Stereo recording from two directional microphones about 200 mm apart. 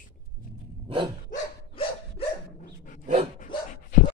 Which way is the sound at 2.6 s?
40° left (ahead or behind).